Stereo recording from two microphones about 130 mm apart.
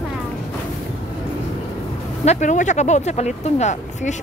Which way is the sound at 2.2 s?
70° left (ahead or behind).